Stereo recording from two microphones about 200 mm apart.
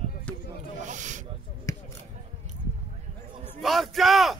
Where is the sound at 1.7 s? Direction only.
15° left (ahead or behind).